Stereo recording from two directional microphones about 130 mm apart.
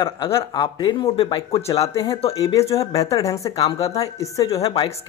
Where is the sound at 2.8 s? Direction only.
25° left (ahead or behind).